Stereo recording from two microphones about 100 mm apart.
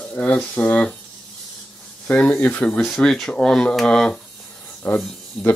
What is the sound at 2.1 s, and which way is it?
Speech, 15° left (ahead or behind).